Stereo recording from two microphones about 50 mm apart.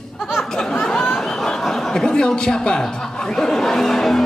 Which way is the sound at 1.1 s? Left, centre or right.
Centre.